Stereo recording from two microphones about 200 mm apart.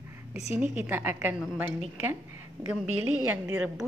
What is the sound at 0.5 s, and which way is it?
Speech, 5° right (ahead or behind).